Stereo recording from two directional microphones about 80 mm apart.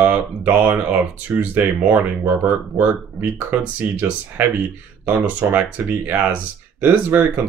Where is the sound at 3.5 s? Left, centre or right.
Right.